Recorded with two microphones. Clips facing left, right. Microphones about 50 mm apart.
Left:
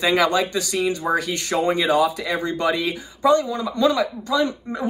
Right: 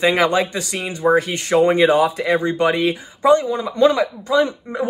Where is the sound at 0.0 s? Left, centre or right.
Right.